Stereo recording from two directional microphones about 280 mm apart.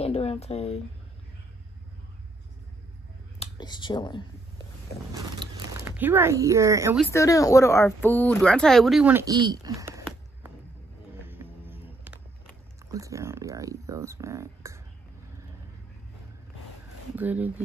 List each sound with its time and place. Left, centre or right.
0.0 s speech: left
3.3 s a sound: centre
5.1 s speech: centre
7.1 s speech: centre
11.2 s music: centre
12.9 s speech: centre
17.1 s speech: centre